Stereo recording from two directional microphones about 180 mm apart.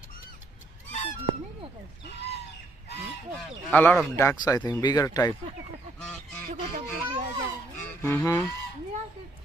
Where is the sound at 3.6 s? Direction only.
5° left (ahead or behind).